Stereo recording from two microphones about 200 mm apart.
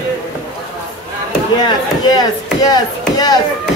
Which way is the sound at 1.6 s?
20° left (ahead or behind).